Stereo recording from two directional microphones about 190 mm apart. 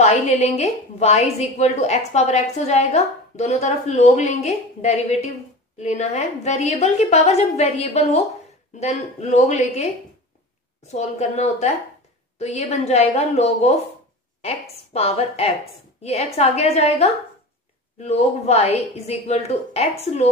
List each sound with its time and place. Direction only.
0.0 s a woman's voice: 35° left (ahead or behind)
10.9 s a woman's voice: 35° left (ahead or behind)